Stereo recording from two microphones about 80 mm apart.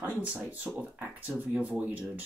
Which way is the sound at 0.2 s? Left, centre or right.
Centre.